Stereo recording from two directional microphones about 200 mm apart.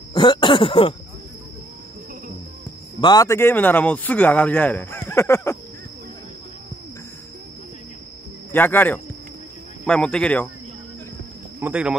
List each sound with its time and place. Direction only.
0.1 s throat clearing: 25° left (ahead or behind)
3.0 s speech: 20° left (ahead or behind)
8.5 s speech: 10° left (ahead or behind)
11.6 s speech: 5° right (ahead or behind)